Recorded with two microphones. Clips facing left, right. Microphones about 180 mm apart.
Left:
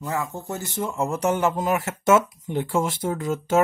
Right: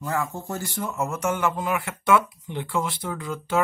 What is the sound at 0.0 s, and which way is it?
Speech, 15° left (ahead or behind).